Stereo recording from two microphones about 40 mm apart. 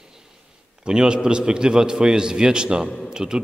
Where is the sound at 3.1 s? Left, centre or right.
Centre.